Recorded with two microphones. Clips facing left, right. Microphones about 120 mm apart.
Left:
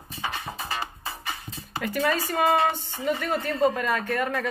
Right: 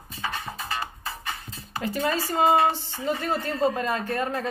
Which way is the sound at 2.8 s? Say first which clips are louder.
Even; 25° left (ahead or behind).